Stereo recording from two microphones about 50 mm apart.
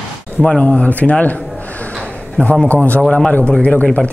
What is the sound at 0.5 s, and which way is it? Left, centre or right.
Speech, left.